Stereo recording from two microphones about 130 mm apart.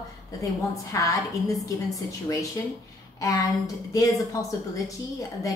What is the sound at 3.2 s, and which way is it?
A woman's voice, 25° left (ahead or behind).